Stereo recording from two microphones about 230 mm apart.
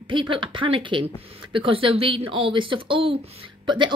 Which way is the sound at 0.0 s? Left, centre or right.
Right.